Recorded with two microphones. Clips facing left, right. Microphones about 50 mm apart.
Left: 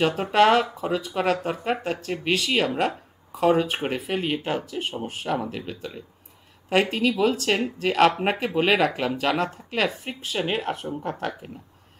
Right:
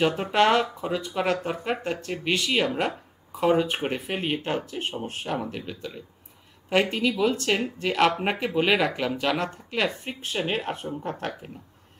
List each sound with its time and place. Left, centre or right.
0.0 s speech: centre
4.1 s speech: centre
4.9 s speech: centre
5.7 s speech: centre
6.7 s speech: centre